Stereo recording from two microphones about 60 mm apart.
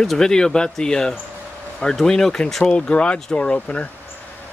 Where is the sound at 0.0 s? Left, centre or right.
Centre.